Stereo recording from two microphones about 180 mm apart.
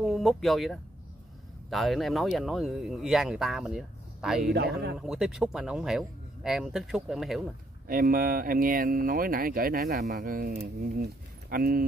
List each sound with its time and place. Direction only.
0.0 s speech: centre (ahead or behind)
7.9 s speech: 50° right (ahead or behind)